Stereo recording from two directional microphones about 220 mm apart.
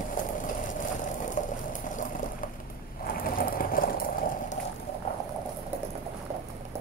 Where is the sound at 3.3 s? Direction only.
40° left (ahead or behind).